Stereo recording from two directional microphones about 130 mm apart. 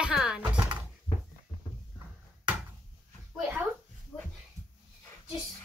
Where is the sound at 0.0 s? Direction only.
5° right (ahead or behind).